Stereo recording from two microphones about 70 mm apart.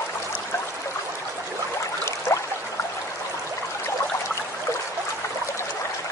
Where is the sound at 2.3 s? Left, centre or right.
Left.